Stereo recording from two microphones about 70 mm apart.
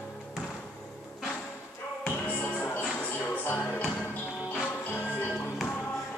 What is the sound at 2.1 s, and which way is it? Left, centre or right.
Music, left.